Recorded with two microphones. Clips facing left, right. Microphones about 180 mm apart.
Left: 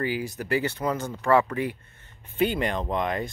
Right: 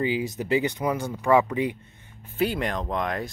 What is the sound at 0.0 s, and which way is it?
Speech, 20° right (ahead or behind).